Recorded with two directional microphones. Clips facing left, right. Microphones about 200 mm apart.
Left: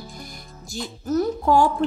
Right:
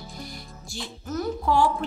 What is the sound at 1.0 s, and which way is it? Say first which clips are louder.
Speech: left 6 dB; 40° left (ahead or behind).